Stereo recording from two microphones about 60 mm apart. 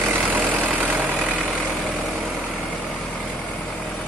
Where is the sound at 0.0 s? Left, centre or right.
Right.